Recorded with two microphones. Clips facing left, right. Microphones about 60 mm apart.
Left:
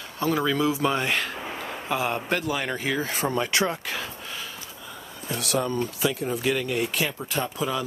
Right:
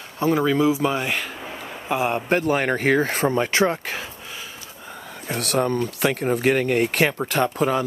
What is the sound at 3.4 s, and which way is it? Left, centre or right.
Speech, right.